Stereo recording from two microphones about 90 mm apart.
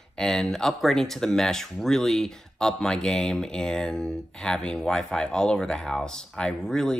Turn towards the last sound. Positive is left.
turn(degrees=5)  # may be behind; listen again after turning